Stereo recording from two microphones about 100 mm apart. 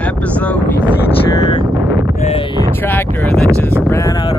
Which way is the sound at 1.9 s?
25° right (ahead or behind).